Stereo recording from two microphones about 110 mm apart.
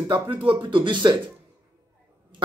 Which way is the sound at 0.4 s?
50° right (ahead or behind).